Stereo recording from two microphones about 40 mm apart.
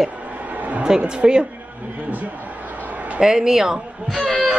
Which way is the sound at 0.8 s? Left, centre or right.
Right.